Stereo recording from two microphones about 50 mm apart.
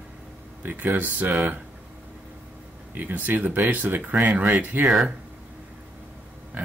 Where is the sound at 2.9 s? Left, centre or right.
Right.